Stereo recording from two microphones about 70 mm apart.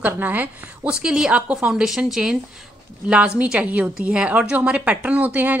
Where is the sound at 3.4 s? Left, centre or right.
Centre.